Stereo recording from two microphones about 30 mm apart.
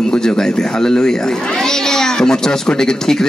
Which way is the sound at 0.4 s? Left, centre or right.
Centre.